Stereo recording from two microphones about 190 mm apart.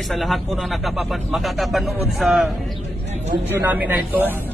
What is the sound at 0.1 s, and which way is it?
A man's voice, centre (ahead or behind).